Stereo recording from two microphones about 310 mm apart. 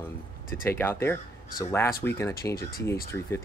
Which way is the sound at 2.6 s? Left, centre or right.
Left.